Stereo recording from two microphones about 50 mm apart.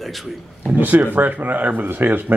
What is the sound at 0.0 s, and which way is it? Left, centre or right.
Speech, centre.